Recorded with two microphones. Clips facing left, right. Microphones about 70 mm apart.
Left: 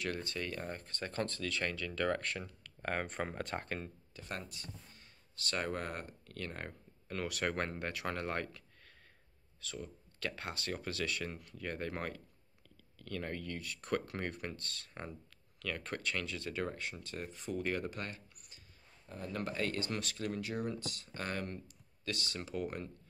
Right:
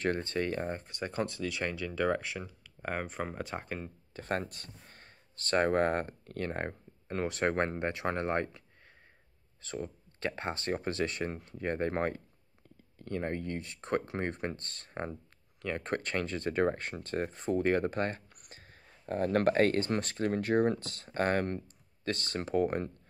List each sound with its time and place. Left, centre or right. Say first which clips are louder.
0.0 s speech: right 8 dB; right; by 3.9 s centre
4.1 s speech: right 12 dB; right
18.4 s speech: right 7 dB; right